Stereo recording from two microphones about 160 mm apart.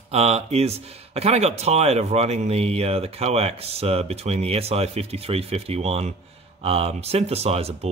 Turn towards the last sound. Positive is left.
turn(degrees=-40)  # may be behind; listen again after turning